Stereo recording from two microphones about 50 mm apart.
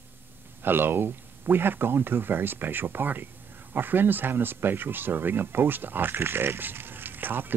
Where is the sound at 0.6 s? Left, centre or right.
Right.